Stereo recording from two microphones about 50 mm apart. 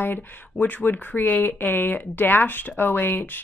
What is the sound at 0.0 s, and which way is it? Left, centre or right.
Speech, left.